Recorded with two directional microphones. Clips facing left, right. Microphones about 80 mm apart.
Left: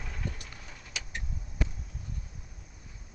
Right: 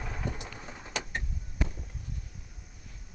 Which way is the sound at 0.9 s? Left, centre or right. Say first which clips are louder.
Right 6 dB; right.